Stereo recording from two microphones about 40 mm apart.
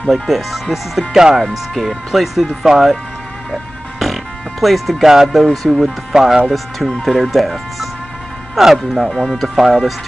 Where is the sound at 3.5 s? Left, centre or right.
Centre.